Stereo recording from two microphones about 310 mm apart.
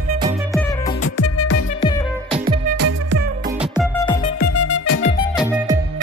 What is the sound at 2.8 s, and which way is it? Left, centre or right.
Music, right.